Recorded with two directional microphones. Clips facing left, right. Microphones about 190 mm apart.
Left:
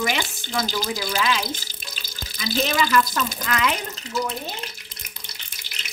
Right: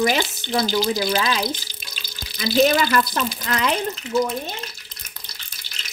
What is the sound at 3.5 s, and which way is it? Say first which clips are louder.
Speech: right 1 dB; 35° right (ahead or behind).